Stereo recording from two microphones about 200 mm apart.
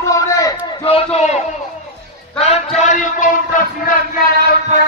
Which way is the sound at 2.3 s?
30° left (ahead or behind).